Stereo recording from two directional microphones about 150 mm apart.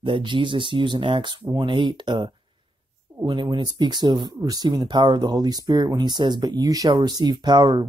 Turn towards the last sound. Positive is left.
turn(degrees=-30)  # may be behind; listen again after turning